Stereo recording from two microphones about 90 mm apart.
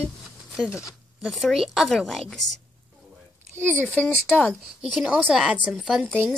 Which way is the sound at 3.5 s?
25° right (ahead or behind).